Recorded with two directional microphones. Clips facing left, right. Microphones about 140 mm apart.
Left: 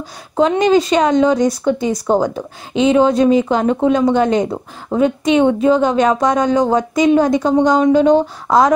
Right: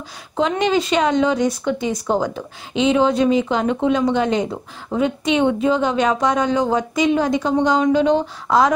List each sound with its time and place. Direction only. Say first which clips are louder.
0.4 s speech: left 6 dB; 40° left (ahead or behind)